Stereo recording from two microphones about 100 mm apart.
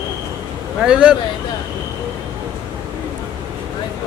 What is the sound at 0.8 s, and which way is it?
Speech, 10° right (ahead or behind).